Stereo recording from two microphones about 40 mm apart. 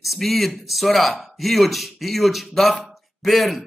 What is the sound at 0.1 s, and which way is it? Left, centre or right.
A man's voice, centre.